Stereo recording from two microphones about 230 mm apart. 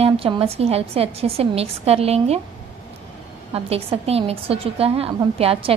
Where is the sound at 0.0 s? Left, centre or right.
Right.